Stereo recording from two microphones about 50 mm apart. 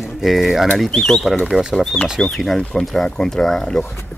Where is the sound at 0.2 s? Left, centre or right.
Centre.